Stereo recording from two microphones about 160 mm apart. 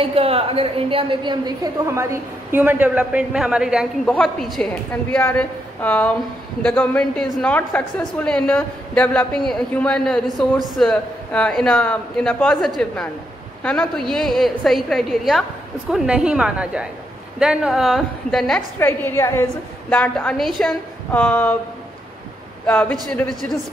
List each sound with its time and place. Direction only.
0.0 s a woman's voice: 35° right (ahead or behind); by 18.6 s centre (ahead or behind)
18.8 s a woman's voice: 15° left (ahead or behind)
21.1 s a woman's voice: 10° left (ahead or behind)
22.7 s a woman's voice: 10° left (ahead or behind)